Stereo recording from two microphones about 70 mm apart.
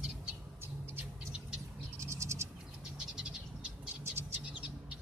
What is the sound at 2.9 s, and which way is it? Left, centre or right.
Bird, centre.